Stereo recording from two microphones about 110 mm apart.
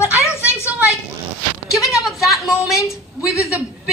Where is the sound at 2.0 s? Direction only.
Centre (ahead or behind).